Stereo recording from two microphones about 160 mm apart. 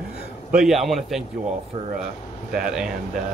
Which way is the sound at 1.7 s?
40° right (ahead or behind).